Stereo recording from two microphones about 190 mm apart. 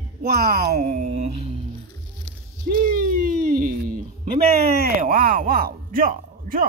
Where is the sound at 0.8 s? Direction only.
35° right (ahead or behind).